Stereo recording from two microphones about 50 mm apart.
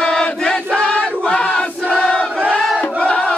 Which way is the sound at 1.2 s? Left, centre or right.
Left.